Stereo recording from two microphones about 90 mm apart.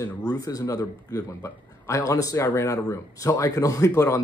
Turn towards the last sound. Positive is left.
turn(degrees=35)  # may be behind; listen again after turning